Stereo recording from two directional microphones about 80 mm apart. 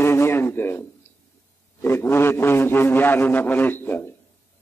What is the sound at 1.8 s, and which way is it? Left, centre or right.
A man's voice, left.